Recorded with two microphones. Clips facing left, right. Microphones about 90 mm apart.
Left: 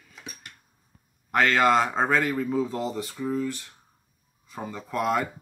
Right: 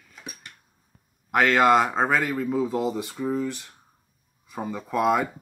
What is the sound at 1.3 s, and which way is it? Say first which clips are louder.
Speech: right 2 dB; 10° right (ahead or behind).